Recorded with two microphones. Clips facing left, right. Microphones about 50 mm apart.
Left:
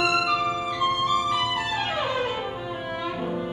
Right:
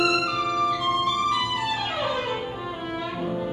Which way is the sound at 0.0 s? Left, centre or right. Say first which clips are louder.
Even; left.